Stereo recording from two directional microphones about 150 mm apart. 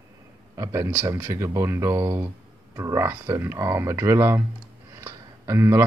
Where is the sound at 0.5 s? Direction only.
20° right (ahead or behind).